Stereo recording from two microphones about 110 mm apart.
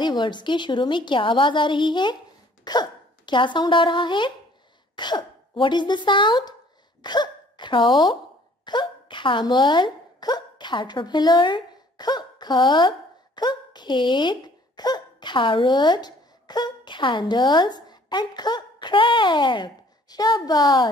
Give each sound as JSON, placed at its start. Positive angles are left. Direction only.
{"t": 0.0, "sound": "a woman's voice", "side_deg": 45}